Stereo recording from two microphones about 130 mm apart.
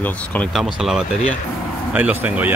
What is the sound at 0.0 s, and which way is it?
Speech, 10° left (ahead or behind).